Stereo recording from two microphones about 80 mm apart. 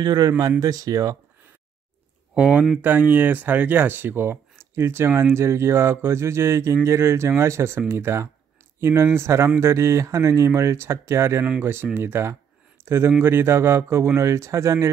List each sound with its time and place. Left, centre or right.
0.0 s speech: right
2.3 s speech: centre; by 14.9 s right